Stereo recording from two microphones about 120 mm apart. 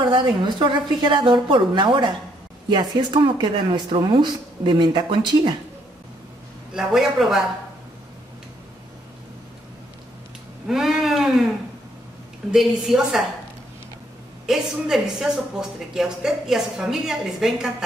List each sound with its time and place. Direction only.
0.0 s speech: 40° right (ahead or behind)
6.7 s speech: 5° right (ahead or behind)
10.7 s speech: 5° right (ahead or behind)
12.4 s speech: 5° right (ahead or behind)
14.4 s speech: 5° right (ahead or behind)